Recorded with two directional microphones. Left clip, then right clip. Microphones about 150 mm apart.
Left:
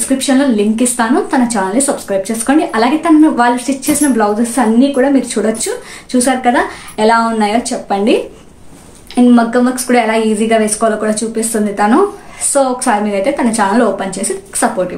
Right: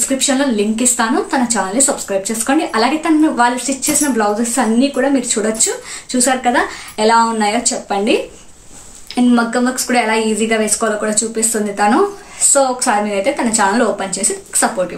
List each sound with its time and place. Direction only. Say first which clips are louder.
0.2 s speech: left 4 dB; 5° right (ahead or behind)